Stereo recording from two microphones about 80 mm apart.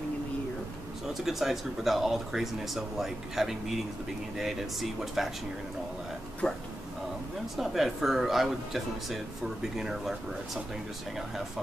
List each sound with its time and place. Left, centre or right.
1.0 s speech: centre
6.4 s speech: centre
7.5 s speech: centre